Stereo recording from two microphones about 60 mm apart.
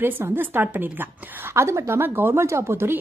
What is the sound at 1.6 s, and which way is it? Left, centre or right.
Speech, right.